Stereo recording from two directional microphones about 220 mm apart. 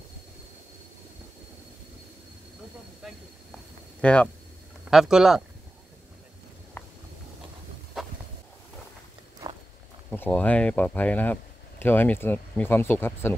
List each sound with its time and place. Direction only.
4.0 s speech: 5° left (ahead or behind)
6.8 s walk: 10° left (ahead or behind)
10.1 s speech: 10° left (ahead or behind)